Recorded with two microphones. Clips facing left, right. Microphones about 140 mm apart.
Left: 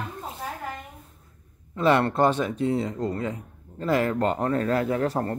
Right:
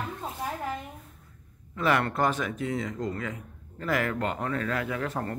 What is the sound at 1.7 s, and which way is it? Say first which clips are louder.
Speech: left 5 dB; 30° left (ahead or behind).